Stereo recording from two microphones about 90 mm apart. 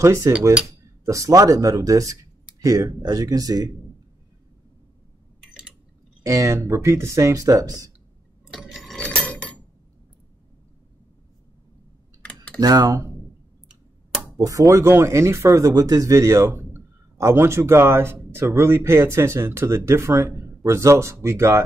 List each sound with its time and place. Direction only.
0.0 s speech: 30° right (ahead or behind)
6.2 s speech: 40° right (ahead or behind)
8.5 s a sound: centre (ahead or behind)
12.5 s speech: 50° right (ahead or behind)
14.3 s speech: 40° right (ahead or behind)